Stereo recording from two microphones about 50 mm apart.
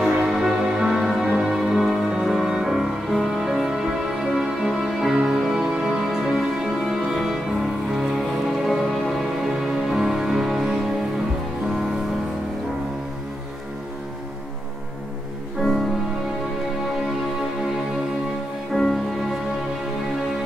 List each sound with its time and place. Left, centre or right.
0.3 s music: centre
1.6 s music: centre
5.4 s music: centre
18.7 s music: centre